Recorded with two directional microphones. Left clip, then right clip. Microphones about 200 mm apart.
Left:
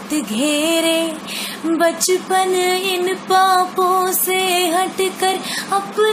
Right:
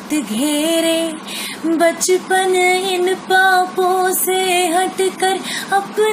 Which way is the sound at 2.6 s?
20° left (ahead or behind).